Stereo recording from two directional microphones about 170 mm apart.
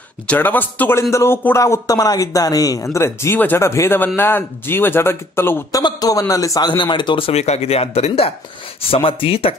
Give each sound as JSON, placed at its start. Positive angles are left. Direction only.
{"t": 0.3, "sound": "a man's voice", "side_deg": 10}